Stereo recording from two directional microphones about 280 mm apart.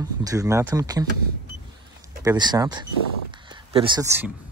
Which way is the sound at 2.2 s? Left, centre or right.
Centre.